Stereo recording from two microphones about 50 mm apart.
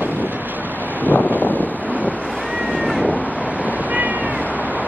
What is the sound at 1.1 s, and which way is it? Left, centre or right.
Wind noise, left.